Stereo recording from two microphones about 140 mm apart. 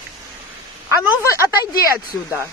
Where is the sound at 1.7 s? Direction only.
90° left.